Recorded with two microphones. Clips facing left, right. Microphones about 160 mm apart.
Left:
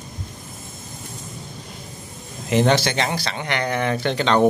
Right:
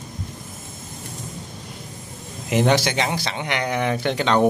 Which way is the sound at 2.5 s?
10° right (ahead or behind).